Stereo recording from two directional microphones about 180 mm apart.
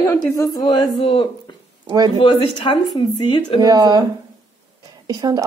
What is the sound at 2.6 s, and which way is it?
Speech, 30° left (ahead or behind).